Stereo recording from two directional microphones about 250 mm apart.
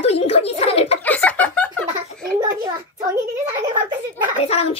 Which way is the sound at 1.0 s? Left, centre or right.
Centre.